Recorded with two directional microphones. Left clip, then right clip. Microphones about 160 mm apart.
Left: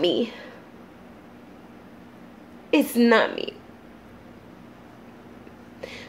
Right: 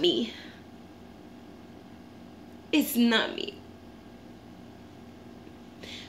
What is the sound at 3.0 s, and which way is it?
Speech, 20° left (ahead or behind).